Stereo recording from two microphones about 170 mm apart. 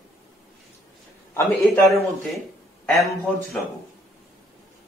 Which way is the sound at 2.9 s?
15° left (ahead or behind).